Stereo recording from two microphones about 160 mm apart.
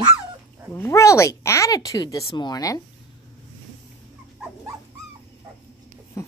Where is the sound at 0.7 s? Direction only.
15° left (ahead or behind).